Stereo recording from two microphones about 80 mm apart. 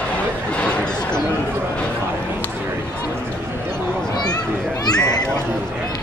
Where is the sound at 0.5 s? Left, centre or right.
Centre.